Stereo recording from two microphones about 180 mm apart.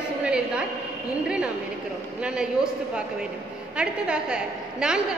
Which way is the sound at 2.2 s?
5° right (ahead or behind).